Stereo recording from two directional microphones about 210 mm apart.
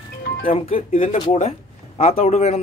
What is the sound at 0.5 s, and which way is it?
Speech, 25° left (ahead or behind).